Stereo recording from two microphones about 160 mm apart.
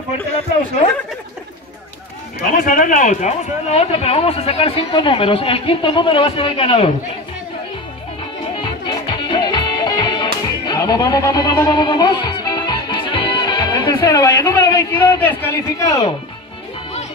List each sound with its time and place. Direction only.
2.5 s a man's voice: 60° left (ahead or behind); by 6.9 s 35° left (ahead or behind)
8.5 s music: 30° left (ahead or behind)
14.6 s a man's voice: 20° left (ahead or behind)
14.9 s a man's voice: 10° left (ahead or behind)